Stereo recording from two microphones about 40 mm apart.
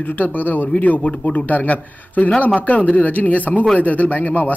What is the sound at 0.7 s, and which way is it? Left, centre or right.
Speech, left.